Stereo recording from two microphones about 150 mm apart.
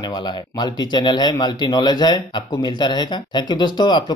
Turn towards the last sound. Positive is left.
turn(degrees=30)  # may be behind; listen again after turning